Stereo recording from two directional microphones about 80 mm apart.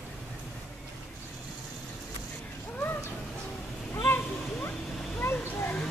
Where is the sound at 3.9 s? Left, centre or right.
Left.